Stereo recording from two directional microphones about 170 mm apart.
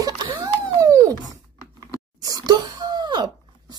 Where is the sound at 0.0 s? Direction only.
20° right (ahead or behind).